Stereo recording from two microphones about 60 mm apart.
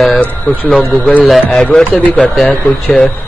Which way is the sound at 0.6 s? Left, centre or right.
Left.